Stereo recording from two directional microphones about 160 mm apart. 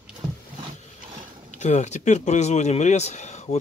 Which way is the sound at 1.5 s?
45° left (ahead or behind).